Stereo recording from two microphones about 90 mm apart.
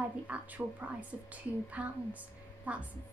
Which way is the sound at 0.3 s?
15° right (ahead or behind).